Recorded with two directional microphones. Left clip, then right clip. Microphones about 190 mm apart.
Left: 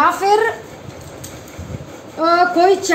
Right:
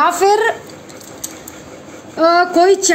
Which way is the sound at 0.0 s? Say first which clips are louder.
Right 1 dB; 65° right (ahead or behind).